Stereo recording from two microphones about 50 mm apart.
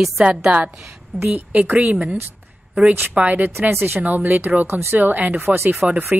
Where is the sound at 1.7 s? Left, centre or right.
Centre.